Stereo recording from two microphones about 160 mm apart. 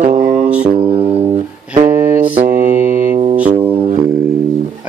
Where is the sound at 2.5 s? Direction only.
55° right (ahead or behind).